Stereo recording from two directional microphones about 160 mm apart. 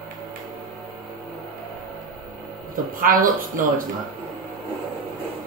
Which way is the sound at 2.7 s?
60° right (ahead or behind).